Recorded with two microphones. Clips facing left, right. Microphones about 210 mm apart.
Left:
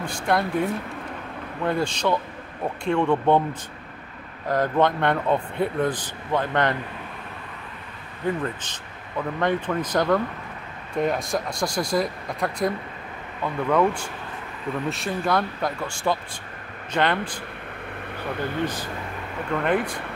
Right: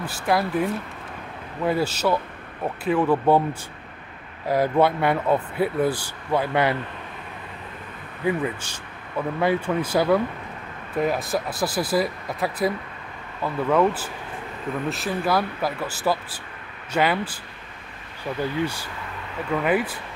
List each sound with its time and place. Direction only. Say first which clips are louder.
0.0 s speech: right 1 dB; 5° right (ahead or behind)
4.5 s speech: right 2 dB; 10° right (ahead or behind)
8.3 s speech: right 2 dB; 10° right (ahead or behind)
19.5 s speech: right 1 dB; 5° right (ahead or behind)